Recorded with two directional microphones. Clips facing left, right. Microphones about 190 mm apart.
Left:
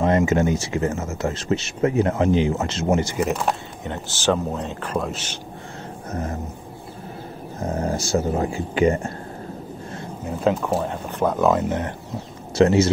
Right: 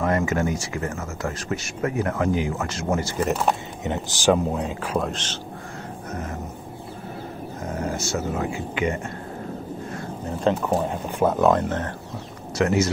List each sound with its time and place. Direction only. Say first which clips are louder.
0.0 s speech: left 4 dB; 25° left (ahead or behind)
3.2 s speech: left 1 dB; centre (ahead or behind)
3.8 s speech: right 2 dB; 15° right (ahead or behind); by 5.4 s 10° left (ahead or behind)
7.6 s speech: left 4 dB; 30° left (ahead or behind)
10.2 s speech: left 1 dB; 5° left (ahead or behind)
12.5 s speech: left 5 dB; 30° left (ahead or behind)